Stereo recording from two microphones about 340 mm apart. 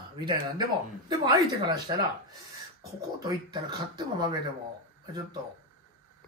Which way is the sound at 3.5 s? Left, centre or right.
Centre.